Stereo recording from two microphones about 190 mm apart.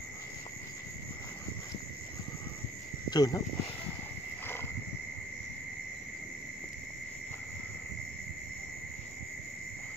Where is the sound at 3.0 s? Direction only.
20° left (ahead or behind).